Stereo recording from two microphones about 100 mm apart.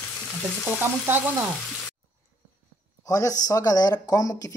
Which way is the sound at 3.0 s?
35° left (ahead or behind).